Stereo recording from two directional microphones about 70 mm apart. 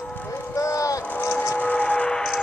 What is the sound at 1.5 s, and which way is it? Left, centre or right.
Music, left.